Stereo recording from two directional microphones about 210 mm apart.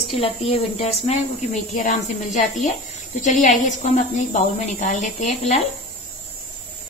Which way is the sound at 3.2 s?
35° left (ahead or behind).